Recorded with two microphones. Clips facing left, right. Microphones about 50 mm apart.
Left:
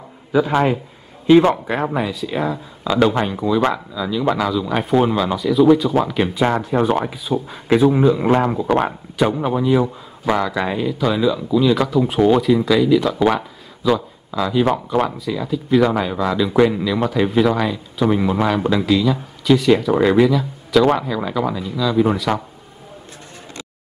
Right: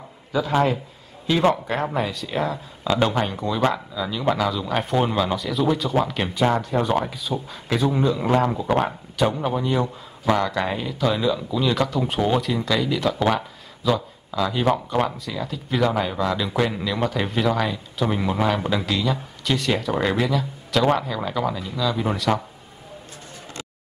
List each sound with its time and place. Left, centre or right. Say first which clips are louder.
0.3 s a man's voice: left 4 dB; left
1.7 s speech: left 3 dB; centre
6.8 s a man's voice: left 4 dB; centre
8.8 s a man's voice: left 3 dB; centre